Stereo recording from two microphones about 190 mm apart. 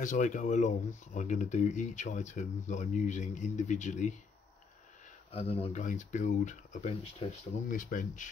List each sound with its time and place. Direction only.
0.0 s speech: 40° left (ahead or behind)
5.3 s speech: 30° left (ahead or behind)